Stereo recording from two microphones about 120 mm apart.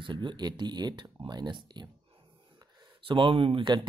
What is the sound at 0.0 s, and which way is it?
Speech, 40° right (ahead or behind).